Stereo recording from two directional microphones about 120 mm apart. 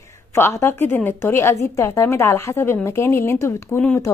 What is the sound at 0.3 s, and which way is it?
A woman's voice, 20° left (ahead or behind).